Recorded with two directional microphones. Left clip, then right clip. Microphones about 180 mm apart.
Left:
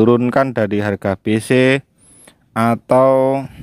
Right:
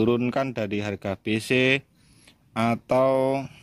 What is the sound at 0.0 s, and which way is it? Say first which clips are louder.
Speech: left 10 dB; 30° left (ahead or behind).